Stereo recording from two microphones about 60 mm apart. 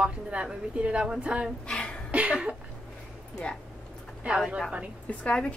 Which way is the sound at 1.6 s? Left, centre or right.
Centre.